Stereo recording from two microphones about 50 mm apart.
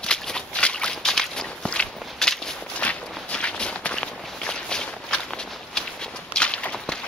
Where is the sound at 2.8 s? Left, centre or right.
Left.